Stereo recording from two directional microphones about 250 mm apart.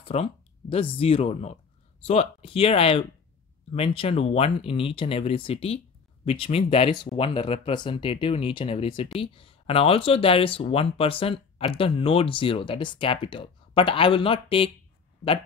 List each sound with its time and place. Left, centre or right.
0.0 s speech: left